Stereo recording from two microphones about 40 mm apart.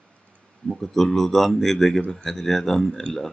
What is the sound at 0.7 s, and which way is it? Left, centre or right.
Speech, centre.